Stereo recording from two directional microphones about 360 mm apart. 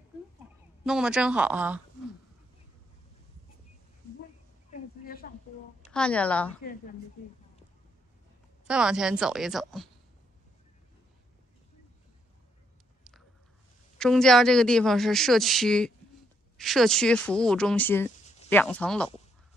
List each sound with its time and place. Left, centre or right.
0.8 s speech: centre
4.6 s a sound: left
5.9 s speech: centre
8.6 s speech: centre
13.9 s speech: centre